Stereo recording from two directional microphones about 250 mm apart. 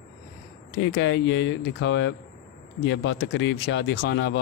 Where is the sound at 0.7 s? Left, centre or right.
Left.